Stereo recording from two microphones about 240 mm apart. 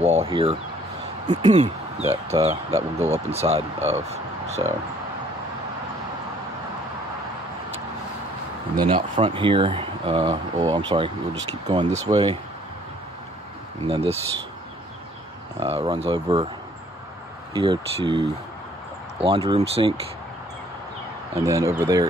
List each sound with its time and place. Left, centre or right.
0.0 s speech: right
8.8 s speech: right
13.8 s speech: right
15.6 s speech: right
17.6 s speech: right
21.4 s speech: centre